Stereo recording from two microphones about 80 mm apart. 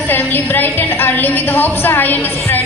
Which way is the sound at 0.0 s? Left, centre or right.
Left.